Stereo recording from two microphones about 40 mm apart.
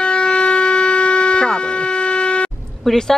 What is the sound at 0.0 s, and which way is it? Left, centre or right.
Vehicle, left.